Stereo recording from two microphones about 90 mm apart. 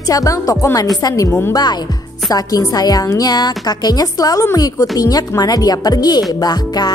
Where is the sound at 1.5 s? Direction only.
50° left (ahead or behind).